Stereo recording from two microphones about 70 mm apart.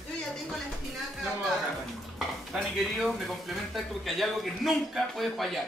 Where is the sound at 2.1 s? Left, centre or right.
Centre.